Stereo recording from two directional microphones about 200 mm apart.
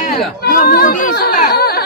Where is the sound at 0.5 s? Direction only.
50° left (ahead or behind).